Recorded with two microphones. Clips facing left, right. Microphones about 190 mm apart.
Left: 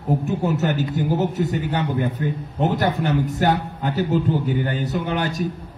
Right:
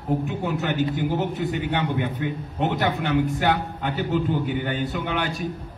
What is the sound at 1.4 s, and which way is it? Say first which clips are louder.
A man's voice: left 2 dB; 40° left (ahead or behind).